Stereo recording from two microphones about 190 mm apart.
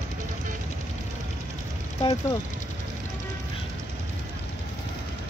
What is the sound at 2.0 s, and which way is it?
Speech, 20° left (ahead or behind).